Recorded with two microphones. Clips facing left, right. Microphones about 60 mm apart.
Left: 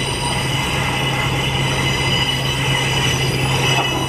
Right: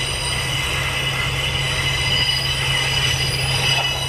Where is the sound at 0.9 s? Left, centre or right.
Centre.